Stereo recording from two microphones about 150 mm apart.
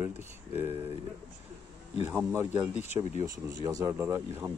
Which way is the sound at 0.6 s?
40° right (ahead or behind).